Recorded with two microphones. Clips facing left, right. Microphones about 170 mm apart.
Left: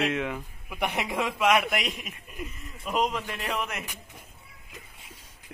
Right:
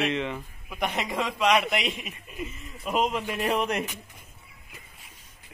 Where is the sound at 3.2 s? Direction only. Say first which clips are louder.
Right 4 dB; 15° right (ahead or behind).